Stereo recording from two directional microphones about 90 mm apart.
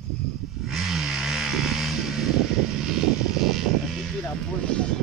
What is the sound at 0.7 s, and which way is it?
Vehicle, 5° right (ahead or behind).